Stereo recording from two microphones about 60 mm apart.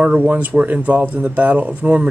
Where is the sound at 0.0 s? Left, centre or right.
Right.